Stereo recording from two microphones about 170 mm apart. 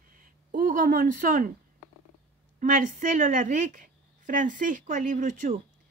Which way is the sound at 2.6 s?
50° right (ahead or behind).